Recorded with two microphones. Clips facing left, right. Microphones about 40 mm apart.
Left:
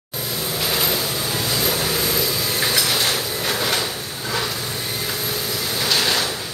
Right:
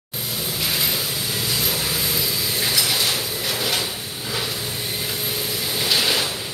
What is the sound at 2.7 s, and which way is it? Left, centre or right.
Train, left.